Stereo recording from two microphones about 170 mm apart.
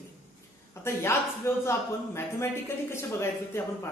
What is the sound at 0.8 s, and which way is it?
Speech, 15° left (ahead or behind).